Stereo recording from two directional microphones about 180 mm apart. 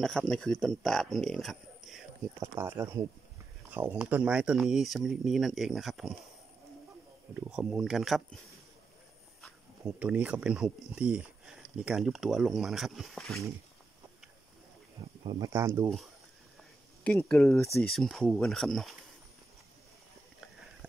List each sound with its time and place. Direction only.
0.0 s speech: 5° left (ahead or behind)
2.6 s speech: 15° right (ahead or behind)
7.5 s speech: 5° right (ahead or behind)
15.2 s speech: 25° right (ahead or behind)
15.5 s speech: 15° right (ahead or behind)
17.0 s speech: 10° left (ahead or behind)
17.3 s speech: centre (ahead or behind)